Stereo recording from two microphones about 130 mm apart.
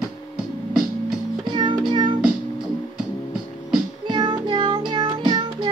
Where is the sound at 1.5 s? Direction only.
35° right (ahead or behind).